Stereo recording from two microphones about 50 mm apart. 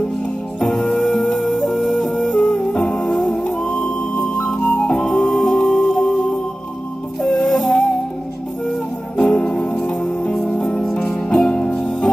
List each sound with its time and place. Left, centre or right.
0.6 s music: centre
9.3 s music: centre
10.3 s music: centre; by 11.7 s left